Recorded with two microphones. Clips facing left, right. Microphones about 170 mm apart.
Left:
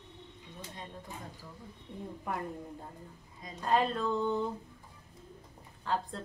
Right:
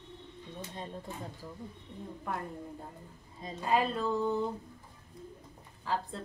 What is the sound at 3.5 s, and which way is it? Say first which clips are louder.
Speech: even; 5° right (ahead or behind).